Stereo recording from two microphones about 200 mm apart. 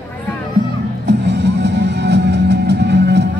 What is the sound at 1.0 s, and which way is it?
Music, 60° right (ahead or behind).